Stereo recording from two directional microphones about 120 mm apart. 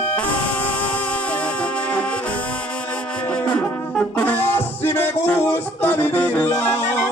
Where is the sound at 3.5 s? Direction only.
10° left (ahead or behind).